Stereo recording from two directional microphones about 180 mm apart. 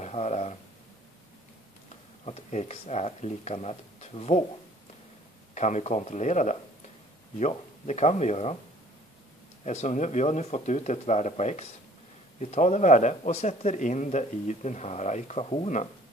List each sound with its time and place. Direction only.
0.0 s a sound: 40° left (ahead or behind)
2.2 s speech: 35° left (ahead or behind)
5.5 s speech: 40° left (ahead or behind)
9.7 s speech: 40° left (ahead or behind)